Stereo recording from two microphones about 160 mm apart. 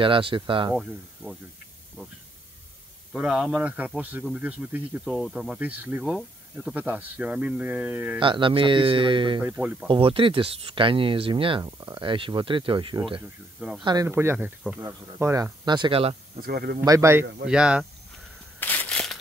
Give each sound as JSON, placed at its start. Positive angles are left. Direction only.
{"t": 0.0, "sound": "speech", "side_deg": -35}
{"t": 0.7, "sound": "speech", "side_deg": 0}
{"t": 3.2, "sound": "speech", "side_deg": -5}
{"t": 8.2, "sound": "speech", "side_deg": -30}
{"t": 9.4, "sound": "speech", "side_deg": -10}
{"t": 9.8, "sound": "speech", "side_deg": -35}
{"t": 13.6, "sound": "speech", "side_deg": -5}
{"t": 15.6, "sound": "speech", "side_deg": -30}
{"t": 16.3, "sound": "speech", "side_deg": -70}
{"t": 16.8, "sound": "speech", "side_deg": -20}
{"t": 17.5, "sound": "speech", "side_deg": -5}
{"t": 18.6, "sound": "a sound", "side_deg": 10}